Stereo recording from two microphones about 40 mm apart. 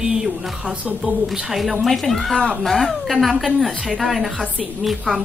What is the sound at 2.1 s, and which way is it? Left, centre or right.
A woman's voice, centre.